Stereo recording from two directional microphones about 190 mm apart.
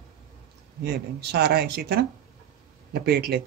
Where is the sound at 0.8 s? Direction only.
60° right (ahead or behind).